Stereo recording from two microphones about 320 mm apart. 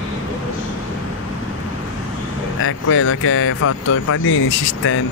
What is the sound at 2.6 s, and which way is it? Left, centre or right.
Speech, left.